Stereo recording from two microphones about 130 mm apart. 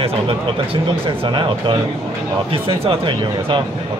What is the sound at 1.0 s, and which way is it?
Speech, 40° right (ahead or behind).